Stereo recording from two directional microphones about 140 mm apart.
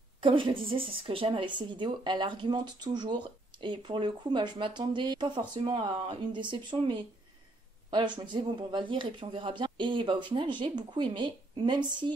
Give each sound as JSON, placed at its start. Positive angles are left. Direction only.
{"t": 0.2, "sound": "speech", "side_deg": -40}